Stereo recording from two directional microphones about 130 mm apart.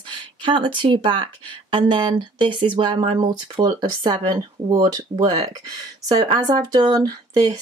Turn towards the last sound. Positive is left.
turn(degrees=-30)  # may be behind; listen again after turning